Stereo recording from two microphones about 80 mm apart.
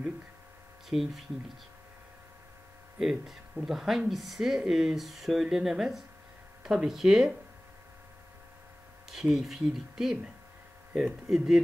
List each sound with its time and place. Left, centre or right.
0.8 s speech: centre
3.0 s speech: centre
9.1 s speech: centre
10.9 s speech: centre
11.2 s speech: centre